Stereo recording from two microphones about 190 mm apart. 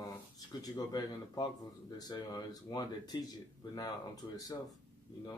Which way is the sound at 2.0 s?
20° left (ahead or behind).